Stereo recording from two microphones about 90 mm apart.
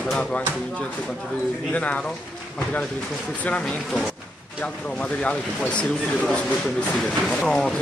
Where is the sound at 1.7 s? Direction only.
15° left (ahead or behind).